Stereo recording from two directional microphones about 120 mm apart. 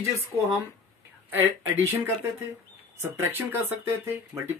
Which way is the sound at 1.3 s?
15° right (ahead or behind).